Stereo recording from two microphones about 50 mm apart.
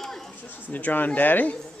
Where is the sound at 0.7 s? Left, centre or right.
Left.